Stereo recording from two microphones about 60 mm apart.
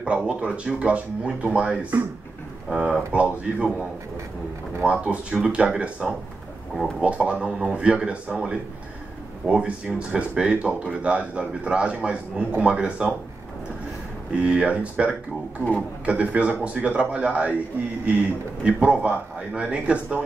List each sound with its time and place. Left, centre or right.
0.3 s speech: right
5.0 s speech: centre
14.3 s speech: centre
16.1 s speech: right